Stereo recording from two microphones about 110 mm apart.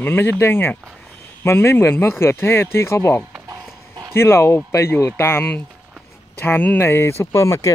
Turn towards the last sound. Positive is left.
turn(degrees=30)  # may be behind; listen again after turning